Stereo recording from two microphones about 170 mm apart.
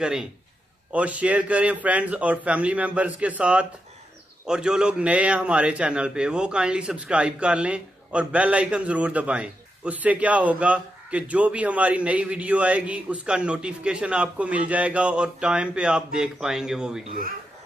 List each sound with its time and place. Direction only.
0.0 s a man's voice: 5° right (ahead or behind)